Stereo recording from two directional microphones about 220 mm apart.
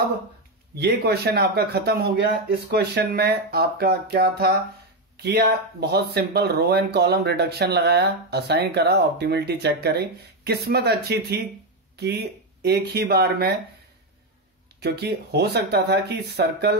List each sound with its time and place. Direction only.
0.7 s speech: 50° right (ahead or behind)
14.8 s speech: 45° right (ahead or behind)